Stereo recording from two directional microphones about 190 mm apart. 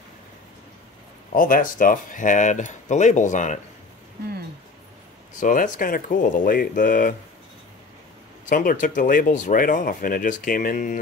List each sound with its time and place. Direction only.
1.3 s speech: 45° left (ahead or behind)
5.4 s speech: 45° left (ahead or behind)
8.5 s speech: 45° left (ahead or behind)